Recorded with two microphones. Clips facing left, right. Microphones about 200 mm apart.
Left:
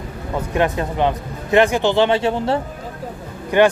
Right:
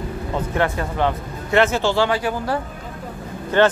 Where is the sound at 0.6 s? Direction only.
20° left (ahead or behind).